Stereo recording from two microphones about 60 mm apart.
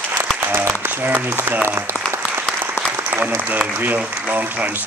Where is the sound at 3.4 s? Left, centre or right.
Right.